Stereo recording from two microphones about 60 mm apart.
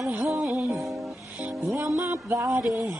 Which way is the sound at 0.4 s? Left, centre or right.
Right.